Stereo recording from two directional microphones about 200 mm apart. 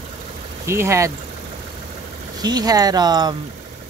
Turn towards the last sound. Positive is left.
turn(degrees=-20)  # may be behind; listen again after turning